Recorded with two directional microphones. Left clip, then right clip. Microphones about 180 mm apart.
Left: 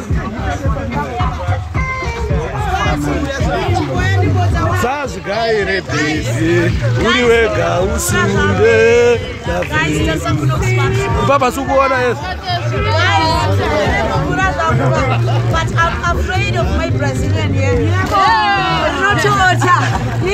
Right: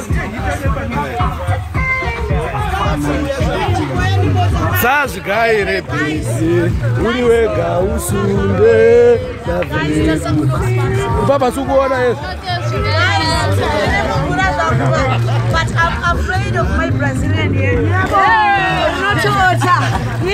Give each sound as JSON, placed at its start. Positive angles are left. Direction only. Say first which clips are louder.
{"t": 4.8, "sound": "speech", "louder": "right 4 dB", "side_deg": 0}
{"t": 7.2, "sound": "speech", "louder": "even", "side_deg": -10}
{"t": 8.1, "sound": "speech", "louder": "left 3 dB", "side_deg": 0}
{"t": 8.6, "sound": "music", "louder": "right 2 dB", "side_deg": -25}
{"t": 11.2, "sound": "music", "louder": "left 1 dB", "side_deg": -25}
{"t": 12.9, "sound": "speech", "louder": "left 2 dB", "side_deg": 10}
{"t": 13.8, "sound": "speech", "louder": "even", "side_deg": 15}
{"t": 18.1, "sound": "speech", "louder": "even", "side_deg": 5}
{"t": 18.4, "sound": "speech", "louder": "right 1 dB", "side_deg": -15}
{"t": 19.3, "sound": "speech", "louder": "left 1 dB", "side_deg": 10}